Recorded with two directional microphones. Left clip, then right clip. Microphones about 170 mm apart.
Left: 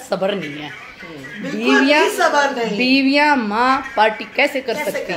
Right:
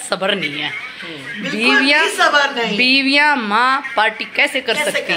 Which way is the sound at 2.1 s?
25° left (ahead or behind).